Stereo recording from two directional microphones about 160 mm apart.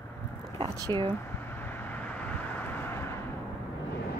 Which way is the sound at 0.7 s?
25° right (ahead or behind).